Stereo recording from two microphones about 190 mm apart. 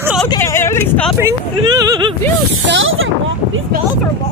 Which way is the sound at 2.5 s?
90° right.